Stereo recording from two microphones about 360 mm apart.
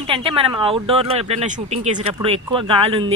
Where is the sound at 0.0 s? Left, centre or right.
Centre.